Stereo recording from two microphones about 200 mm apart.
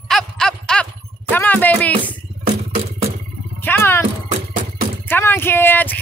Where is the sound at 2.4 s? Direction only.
35° right (ahead or behind).